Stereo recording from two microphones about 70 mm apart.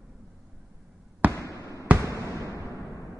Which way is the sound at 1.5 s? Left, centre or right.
Left.